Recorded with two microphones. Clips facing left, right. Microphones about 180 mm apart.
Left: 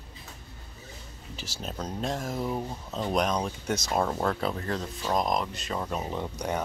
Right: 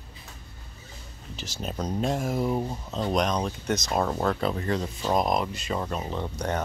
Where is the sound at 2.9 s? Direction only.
5° left (ahead or behind).